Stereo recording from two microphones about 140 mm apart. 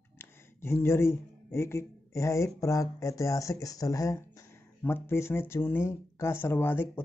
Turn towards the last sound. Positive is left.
turn(degrees=15)  # may be behind; listen again after turning